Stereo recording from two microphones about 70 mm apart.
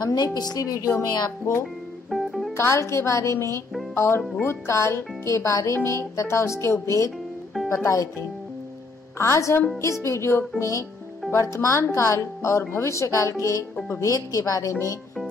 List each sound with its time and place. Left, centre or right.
0.0 s a woman's voice: left
2.0 s music: centre
2.5 s a woman's voice: left